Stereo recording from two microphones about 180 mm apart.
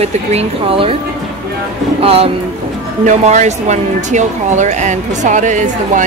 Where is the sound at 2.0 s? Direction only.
35° right (ahead or behind).